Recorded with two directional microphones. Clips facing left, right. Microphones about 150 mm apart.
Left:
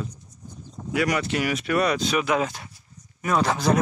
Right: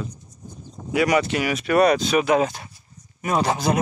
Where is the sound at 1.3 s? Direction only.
90° right; by 2.0 s 70° right (ahead or behind).